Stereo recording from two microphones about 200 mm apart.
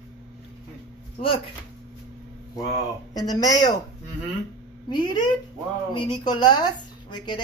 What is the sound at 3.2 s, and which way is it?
Speech, 20° left (ahead or behind).